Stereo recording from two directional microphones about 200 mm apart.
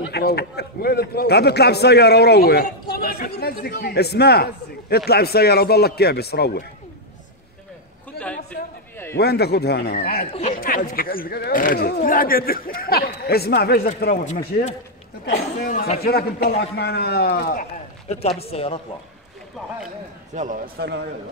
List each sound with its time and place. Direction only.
0.1 s a man's voice: 55° left (ahead or behind)
8.2 s a sound: 50° left (ahead or behind)
9.1 s a man's voice: 55° left (ahead or behind)
10.3 s speech: 35° left (ahead or behind)
10.6 s a man's voice: 45° left (ahead or behind)
14.0 s speech: 40° left (ahead or behind)
15.2 s a man's voice: 50° left (ahead or behind); by 18.8 s 30° left (ahead or behind)
20.3 s speech: 40° right (ahead or behind)